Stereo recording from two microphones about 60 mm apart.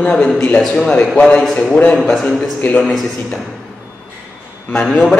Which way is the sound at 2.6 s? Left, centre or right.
Left.